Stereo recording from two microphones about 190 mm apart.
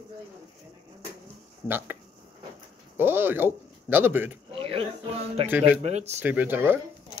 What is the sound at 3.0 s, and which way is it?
Speech, 10° right (ahead or behind).